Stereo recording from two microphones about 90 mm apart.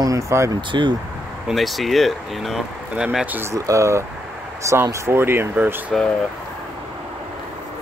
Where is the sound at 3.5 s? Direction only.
35° right (ahead or behind).